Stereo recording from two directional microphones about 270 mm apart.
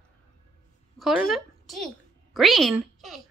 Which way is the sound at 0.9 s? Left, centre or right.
Centre.